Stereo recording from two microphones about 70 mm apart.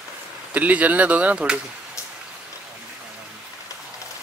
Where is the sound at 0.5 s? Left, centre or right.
Right.